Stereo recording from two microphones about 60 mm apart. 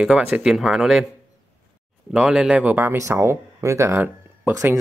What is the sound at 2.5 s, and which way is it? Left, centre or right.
Speech, right.